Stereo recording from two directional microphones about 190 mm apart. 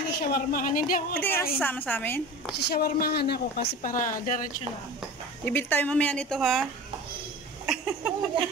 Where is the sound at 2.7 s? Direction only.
55° left (ahead or behind).